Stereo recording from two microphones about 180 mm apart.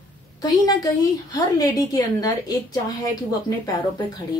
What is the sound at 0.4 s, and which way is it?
Speech, 20° left (ahead or behind).